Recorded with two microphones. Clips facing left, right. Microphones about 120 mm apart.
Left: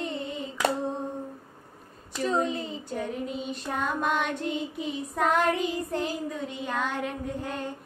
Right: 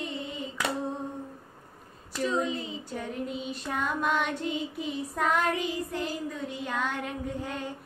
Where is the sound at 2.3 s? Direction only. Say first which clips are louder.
Left 3 dB; 45° left (ahead or behind).